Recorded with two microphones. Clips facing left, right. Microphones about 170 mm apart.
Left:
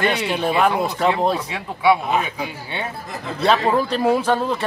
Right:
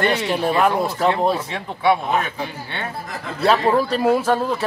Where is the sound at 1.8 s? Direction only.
10° left (ahead or behind).